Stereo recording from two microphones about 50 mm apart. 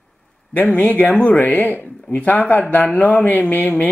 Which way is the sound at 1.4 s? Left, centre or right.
Left.